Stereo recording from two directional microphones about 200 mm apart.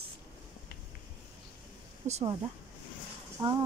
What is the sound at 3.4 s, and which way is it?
Speech, 20° right (ahead or behind).